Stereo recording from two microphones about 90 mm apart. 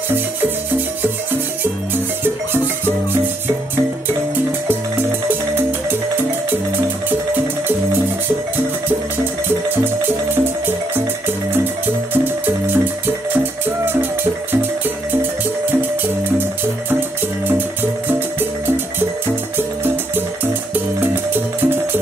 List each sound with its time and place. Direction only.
7.1 s music: 20° right (ahead or behind)
12.1 s music: 20° right (ahead or behind)
20.7 s music: 20° right (ahead or behind)